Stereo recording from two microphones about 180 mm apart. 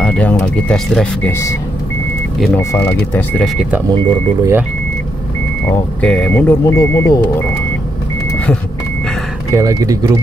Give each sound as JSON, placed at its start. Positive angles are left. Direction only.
{"t": 0.0, "sound": "speech", "side_deg": 5}
{"t": 2.5, "sound": "speech", "side_deg": 15}
{"t": 3.9, "sound": "speech", "side_deg": -20}
{"t": 5.9, "sound": "speech", "side_deg": 5}
{"t": 9.5, "sound": "speech", "side_deg": -15}